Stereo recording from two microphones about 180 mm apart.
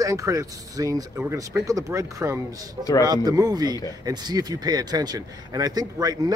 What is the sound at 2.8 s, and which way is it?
Speech, 20° left (ahead or behind).